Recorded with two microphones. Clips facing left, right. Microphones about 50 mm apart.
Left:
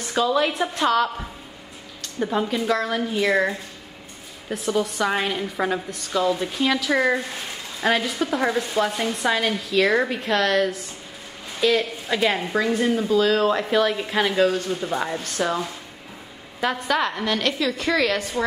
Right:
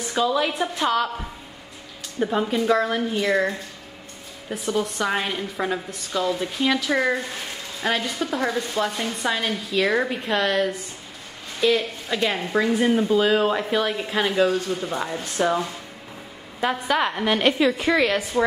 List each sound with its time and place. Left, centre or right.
0.0 s speech: centre
2.1 s speech: centre
3.2 s a woman's voice: centre
12.5 s a woman's voice: centre
15.4 s speech: right
16.6 s a woman's voice: centre